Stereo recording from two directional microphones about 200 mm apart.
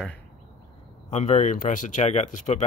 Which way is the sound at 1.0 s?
35° left (ahead or behind).